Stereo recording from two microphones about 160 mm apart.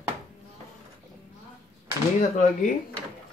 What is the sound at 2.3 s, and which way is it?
Speech, 55° left (ahead or behind).